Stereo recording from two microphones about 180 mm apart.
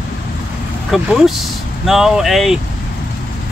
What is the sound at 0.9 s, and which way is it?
Speech, centre (ahead or behind).